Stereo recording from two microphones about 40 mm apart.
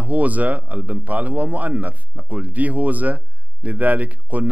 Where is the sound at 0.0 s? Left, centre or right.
Right.